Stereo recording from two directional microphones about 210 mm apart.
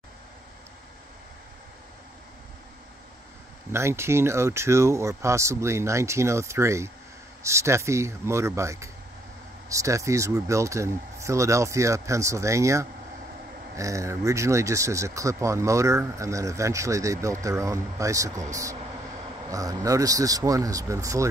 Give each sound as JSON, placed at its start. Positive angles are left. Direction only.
{"t": 3.7, "sound": "speech", "side_deg": -10}